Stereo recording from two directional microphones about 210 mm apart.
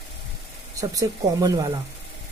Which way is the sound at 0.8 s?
15° right (ahead or behind).